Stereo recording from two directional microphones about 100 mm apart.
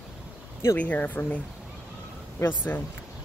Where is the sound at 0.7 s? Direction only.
15° left (ahead or behind).